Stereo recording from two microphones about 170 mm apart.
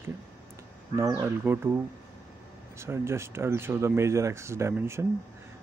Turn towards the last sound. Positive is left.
turn(degrees=-15)  # may be behind; listen again after turning